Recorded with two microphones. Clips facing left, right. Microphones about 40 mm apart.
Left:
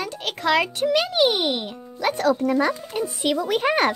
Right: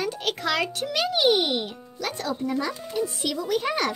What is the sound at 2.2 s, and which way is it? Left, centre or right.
Speech, left.